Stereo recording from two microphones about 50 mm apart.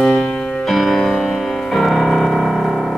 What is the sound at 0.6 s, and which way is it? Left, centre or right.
Music, centre.